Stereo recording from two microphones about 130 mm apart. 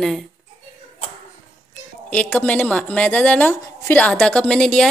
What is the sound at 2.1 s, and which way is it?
A woman's voice, 10° left (ahead or behind).